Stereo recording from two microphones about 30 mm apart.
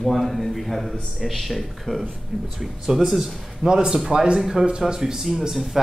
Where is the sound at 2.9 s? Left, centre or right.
Centre.